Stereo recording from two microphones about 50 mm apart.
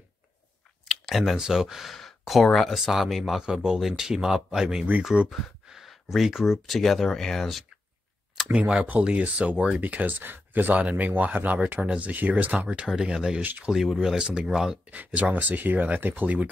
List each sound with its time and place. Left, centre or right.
0.8 s speech: centre
8.5 s speech: right
10.7 s speech: right
12.8 s speech: centre
13.4 s speech: right
13.7 s speech: centre
15.1 s speech: right